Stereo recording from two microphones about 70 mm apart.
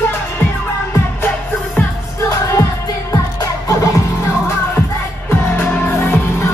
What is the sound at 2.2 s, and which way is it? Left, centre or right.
Music, left.